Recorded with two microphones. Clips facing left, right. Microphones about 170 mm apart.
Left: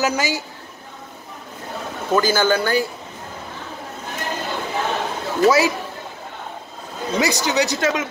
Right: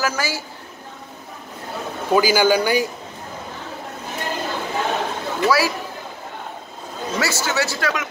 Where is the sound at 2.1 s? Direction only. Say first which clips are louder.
Right 2 dB; 10° right (ahead or behind).